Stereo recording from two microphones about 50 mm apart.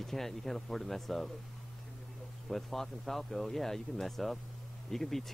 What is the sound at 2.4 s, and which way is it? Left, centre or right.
A man's voice, centre.